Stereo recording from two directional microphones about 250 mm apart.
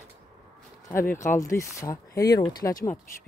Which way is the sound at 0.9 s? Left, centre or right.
Centre.